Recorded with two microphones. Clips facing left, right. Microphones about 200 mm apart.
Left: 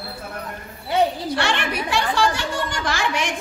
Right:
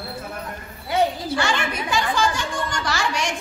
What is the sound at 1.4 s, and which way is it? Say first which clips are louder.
A woman's voice: left 1 dB; 65° left (ahead or behind).